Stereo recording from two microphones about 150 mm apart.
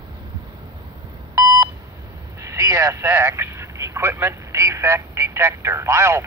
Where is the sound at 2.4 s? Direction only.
20° right (ahead or behind).